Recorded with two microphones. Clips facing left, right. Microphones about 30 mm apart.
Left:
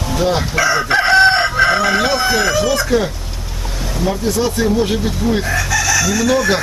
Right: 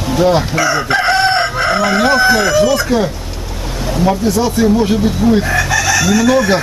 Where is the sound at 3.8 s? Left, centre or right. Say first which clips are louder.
Right 5 dB; centre.